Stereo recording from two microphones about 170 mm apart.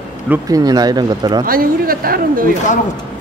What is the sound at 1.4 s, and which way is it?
A woman's voice, 60° right (ahead or behind).